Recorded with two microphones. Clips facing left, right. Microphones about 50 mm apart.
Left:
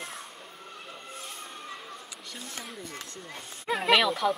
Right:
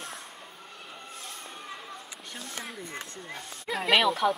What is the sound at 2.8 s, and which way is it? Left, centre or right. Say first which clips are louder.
Speech: right 2 dB; right.